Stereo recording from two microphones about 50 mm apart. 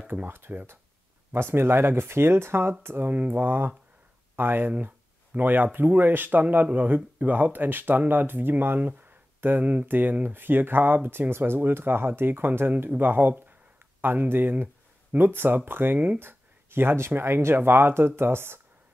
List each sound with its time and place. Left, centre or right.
0.1 s speech: right
3.1 s speech: right